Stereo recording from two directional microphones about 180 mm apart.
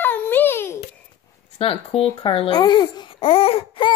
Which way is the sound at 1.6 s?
30° left (ahead or behind).